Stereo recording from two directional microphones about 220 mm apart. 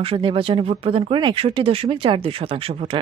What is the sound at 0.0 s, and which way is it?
Speech, 25° right (ahead or behind).